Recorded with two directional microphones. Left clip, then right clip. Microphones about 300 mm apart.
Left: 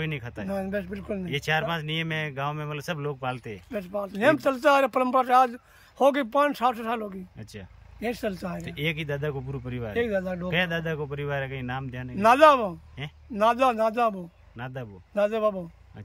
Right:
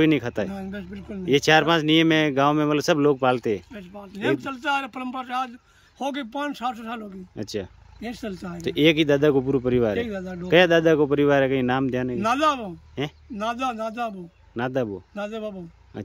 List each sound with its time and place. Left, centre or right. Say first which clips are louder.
0.0 s speech: right 13 dB; centre
0.5 s speech: left 5 dB; centre
1.2 s speech: right 10 dB; centre
3.7 s speech: left 9 dB; centre
8.6 s speech: right 13 dB; centre
9.9 s speech: left 2 dB; centre
10.5 s speech: right 12 dB; centre
12.2 s speech: left 6 dB; centre
13.0 s speech: right 13 dB; centre
13.4 s speech: left 5 dB; centre
14.6 s speech: right 12 dB; centre
15.1 s speech: left 9 dB; centre